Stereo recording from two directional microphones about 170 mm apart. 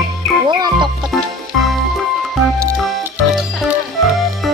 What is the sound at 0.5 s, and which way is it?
Music, 25° right (ahead or behind).